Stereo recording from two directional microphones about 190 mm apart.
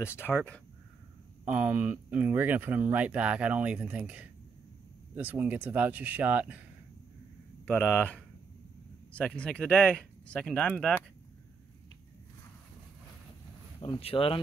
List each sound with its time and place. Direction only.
0.0 s speech: 10° left (ahead or behind)
1.4 s speech: 10° right (ahead or behind)
7.6 s speech: 10° left (ahead or behind)
13.7 s speech: 30° left (ahead or behind)